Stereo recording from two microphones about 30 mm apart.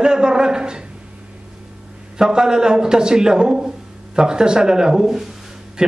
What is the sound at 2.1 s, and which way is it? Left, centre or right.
A man's voice, right.